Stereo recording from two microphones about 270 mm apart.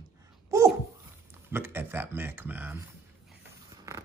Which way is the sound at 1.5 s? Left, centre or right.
Centre.